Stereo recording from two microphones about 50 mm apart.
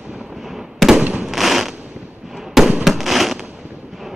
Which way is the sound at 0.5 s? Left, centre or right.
Centre.